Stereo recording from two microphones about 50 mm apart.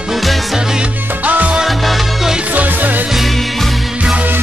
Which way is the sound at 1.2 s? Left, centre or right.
Right.